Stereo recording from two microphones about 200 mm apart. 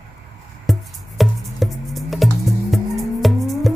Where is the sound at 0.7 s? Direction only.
Centre (ahead or behind).